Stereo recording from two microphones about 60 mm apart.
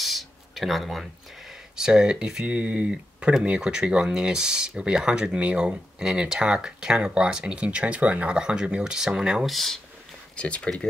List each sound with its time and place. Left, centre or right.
0.0 s a sound: centre
1.8 s speech: centre
9.5 s speech: centre
10.3 s speech: centre